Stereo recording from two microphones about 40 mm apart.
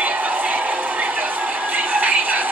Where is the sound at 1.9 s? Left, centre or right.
Right.